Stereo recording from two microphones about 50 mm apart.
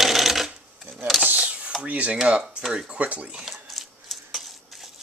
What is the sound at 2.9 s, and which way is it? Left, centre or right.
Speech, right.